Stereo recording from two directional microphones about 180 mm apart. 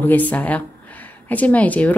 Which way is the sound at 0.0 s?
10° left (ahead or behind).